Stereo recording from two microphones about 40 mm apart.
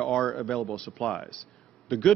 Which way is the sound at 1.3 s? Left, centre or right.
Left.